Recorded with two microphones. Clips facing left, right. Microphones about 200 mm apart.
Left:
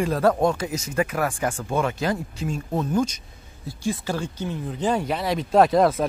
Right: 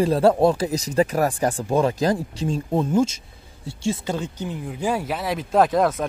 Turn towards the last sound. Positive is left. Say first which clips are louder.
# left 1 dB
turn(degrees=0)  # may be behind; listen again after turning